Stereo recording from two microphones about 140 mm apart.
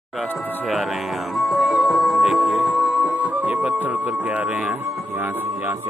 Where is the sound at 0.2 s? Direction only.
Centre (ahead or behind).